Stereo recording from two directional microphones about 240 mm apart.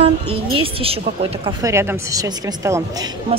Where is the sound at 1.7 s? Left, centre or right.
Centre.